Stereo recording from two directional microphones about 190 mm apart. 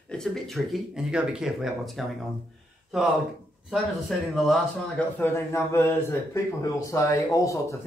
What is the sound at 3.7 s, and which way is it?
Speech, centre (ahead or behind).